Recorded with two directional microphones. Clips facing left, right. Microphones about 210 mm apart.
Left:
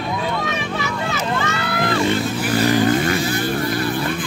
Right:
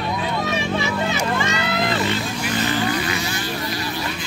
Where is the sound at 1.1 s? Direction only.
15° right (ahead or behind).